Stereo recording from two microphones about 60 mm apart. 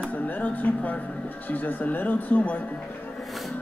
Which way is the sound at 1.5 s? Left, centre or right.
Left.